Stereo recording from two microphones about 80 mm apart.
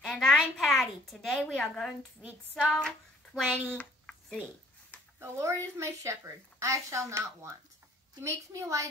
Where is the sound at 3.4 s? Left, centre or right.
Right.